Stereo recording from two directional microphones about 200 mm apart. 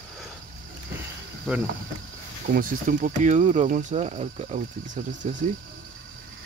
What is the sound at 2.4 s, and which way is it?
Speech, 45° right (ahead or behind).